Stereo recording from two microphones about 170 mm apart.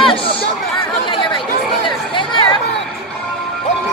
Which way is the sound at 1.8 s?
30° left (ahead or behind).